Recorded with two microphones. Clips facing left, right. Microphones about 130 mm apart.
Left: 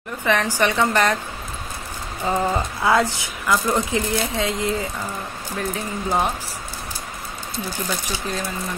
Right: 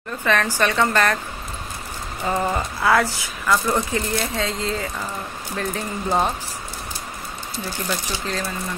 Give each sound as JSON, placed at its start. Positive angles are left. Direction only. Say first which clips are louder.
{"t": 0.2, "sound": "speech", "louder": "left 1 dB", "side_deg": 15}
{"t": 2.2, "sound": "speech", "louder": "left 1 dB", "side_deg": 15}